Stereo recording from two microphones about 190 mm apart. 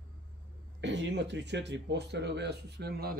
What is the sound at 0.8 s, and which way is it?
Speech, 70° right (ahead or behind).